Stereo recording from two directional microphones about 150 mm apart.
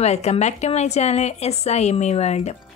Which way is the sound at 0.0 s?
45° left (ahead or behind).